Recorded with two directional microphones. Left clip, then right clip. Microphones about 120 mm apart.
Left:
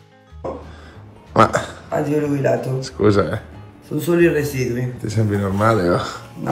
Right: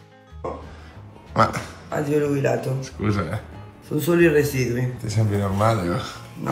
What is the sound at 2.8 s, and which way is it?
Speech, 55° left (ahead or behind).